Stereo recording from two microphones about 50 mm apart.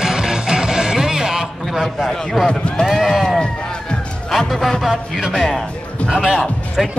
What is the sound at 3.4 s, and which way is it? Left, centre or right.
Run, centre.